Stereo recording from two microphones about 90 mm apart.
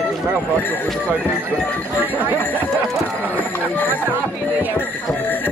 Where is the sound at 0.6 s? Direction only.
20° left (ahead or behind).